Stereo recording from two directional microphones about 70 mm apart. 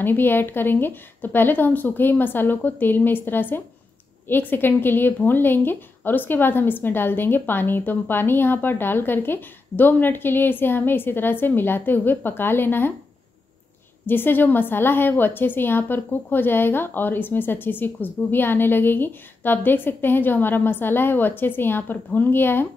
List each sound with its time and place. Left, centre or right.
0.0 s a woman's voice: left
14.0 s a woman's voice: left